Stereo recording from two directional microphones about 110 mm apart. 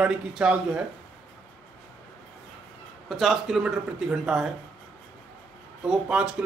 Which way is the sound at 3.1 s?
Centre (ahead or behind).